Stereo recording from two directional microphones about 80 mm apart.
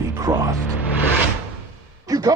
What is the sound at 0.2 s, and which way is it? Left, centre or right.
Speech, right.